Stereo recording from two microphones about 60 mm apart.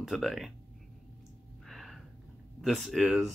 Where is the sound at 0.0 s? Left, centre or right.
Centre.